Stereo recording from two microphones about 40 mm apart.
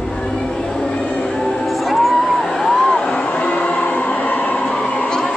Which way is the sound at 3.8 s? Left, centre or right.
Left.